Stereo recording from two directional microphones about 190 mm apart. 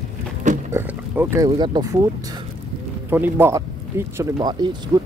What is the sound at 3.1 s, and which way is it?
Speech, 10° right (ahead or behind).